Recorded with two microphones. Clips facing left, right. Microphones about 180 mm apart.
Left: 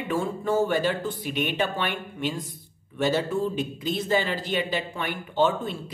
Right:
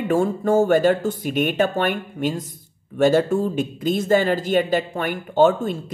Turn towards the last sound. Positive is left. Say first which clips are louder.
# right 7 dB
turn(degrees=-45)  # may be behind; listen again after turning